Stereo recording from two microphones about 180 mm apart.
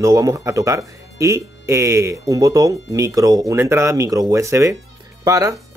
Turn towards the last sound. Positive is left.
turn(degrees=-20)  # may be behind; listen again after turning